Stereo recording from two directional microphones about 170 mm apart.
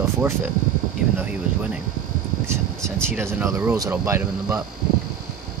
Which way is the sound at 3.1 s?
15° right (ahead or behind).